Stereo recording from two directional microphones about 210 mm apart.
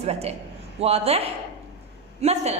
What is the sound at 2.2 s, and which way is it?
Speech, 30° right (ahead or behind).